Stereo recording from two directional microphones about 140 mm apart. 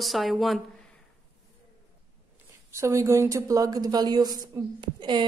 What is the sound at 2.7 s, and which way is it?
A woman's voice, 20° right (ahead or behind).